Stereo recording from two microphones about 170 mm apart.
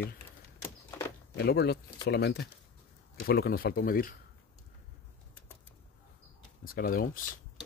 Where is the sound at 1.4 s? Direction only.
75° left (ahead or behind).